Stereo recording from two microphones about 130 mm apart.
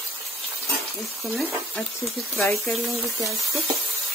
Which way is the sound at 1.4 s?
15° left (ahead or behind).